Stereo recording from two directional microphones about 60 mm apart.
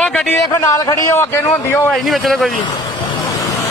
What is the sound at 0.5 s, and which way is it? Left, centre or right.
Speech, left.